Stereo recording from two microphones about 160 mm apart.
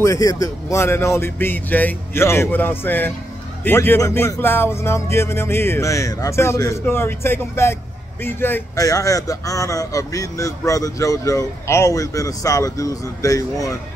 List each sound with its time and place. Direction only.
0.0 s speech: 20° left (ahead or behind)